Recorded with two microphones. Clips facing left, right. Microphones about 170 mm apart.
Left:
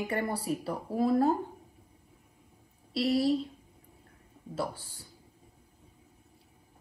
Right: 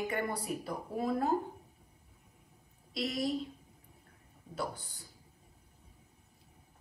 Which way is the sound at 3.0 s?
35° left (ahead or behind).